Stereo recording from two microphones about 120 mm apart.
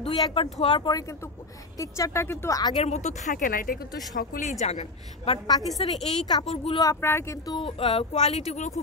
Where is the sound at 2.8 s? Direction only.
75° left (ahead or behind).